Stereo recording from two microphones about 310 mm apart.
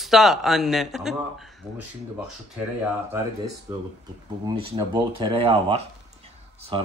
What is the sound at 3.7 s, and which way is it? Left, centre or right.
Speech, centre.